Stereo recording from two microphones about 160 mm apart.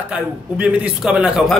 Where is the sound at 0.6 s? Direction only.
5° right (ahead or behind).